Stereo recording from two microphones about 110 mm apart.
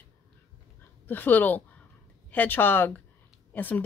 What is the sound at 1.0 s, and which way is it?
Speech, 15° left (ahead or behind).